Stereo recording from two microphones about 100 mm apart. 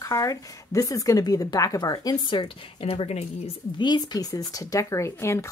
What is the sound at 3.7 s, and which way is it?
Speech, 45° left (ahead or behind).